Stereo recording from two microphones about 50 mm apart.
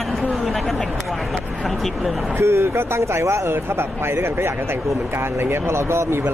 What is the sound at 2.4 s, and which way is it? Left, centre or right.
Speech, right.